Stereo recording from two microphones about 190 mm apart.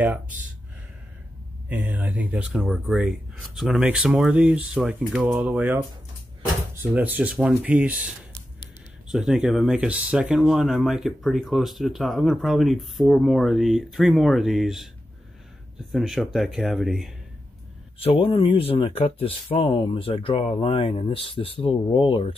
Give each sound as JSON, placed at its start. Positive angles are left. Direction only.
{"t": 0.0, "sound": "speech", "side_deg": -10}
{"t": 1.7, "sound": "speech", "side_deg": -10}
{"t": 15.9, "sound": "speech", "side_deg": 0}
{"t": 17.9, "sound": "speech", "side_deg": 30}